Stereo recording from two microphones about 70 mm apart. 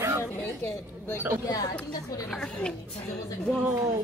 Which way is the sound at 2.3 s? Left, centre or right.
Centre.